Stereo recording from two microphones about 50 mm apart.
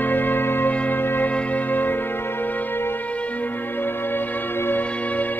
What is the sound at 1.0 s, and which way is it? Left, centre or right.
Music, left.